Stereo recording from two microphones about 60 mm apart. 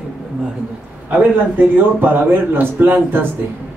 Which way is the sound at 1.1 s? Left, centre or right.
Right.